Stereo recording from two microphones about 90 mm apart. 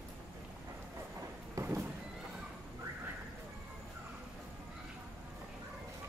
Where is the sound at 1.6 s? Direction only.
35° right (ahead or behind).